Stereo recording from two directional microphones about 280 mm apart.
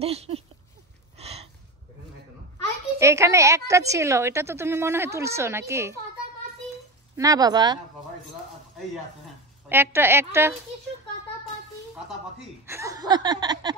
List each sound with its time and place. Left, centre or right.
0.0 s a sound: right
3.0 s a woman's voice: centre
7.2 s a woman's voice: centre
9.7 s a woman's voice: centre
12.6 s a woman's voice: centre